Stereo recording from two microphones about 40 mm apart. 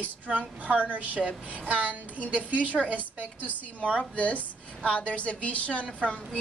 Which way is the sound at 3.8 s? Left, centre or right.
Left.